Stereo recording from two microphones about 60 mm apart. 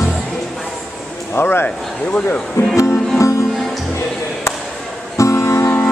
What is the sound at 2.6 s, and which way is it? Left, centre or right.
Speech, left.